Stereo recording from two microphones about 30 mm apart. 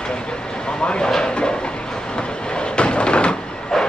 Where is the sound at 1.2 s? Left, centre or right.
Left.